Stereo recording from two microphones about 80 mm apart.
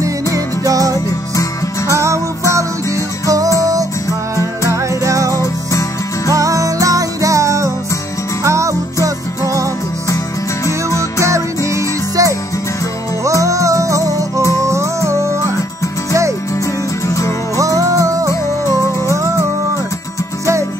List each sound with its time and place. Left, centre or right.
0.7 s music: right
1.3 s music: left
2.0 s music: right
3.3 s music: right
5.3 s music: left
6.3 s music: right
10.0 s music: left
11.2 s music: right
13.4 s music: right
17.6 s music: right
18.3 s music: left